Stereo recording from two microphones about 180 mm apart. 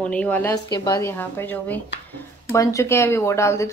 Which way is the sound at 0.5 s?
20° left (ahead or behind).